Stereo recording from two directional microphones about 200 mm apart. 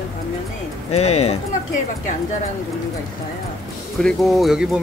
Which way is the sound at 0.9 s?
30° left (ahead or behind).